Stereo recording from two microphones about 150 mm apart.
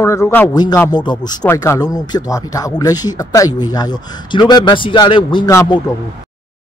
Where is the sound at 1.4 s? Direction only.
15° left (ahead or behind).